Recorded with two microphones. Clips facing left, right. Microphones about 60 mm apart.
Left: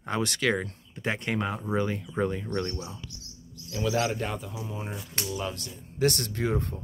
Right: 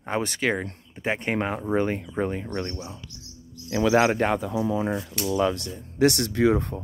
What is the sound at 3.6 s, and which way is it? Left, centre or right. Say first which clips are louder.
Speech: right 8 dB; right.